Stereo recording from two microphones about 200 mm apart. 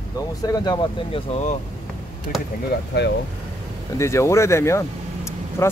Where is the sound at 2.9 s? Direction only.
55° left (ahead or behind).